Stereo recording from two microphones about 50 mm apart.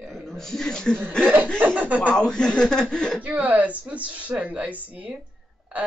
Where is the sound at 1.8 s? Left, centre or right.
Right.